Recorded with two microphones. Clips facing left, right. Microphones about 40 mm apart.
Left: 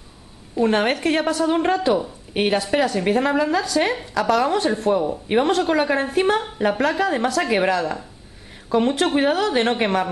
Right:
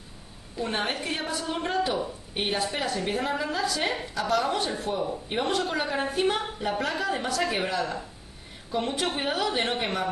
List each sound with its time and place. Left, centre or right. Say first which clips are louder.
0.6 s a woman's voice: left 10 dB; left
3.5 s a woman's voice: left 7 dB; left
4.1 s a woman's voice: left 7 dB; left
4.9 s a woman's voice: left 9 dB; left
8.7 s a woman's voice: left 10 dB; left